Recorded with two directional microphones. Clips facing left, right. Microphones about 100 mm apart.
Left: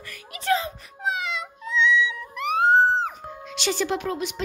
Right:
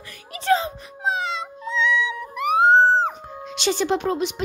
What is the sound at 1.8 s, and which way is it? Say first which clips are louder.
Cat: left 1 dB; 40° right (ahead or behind).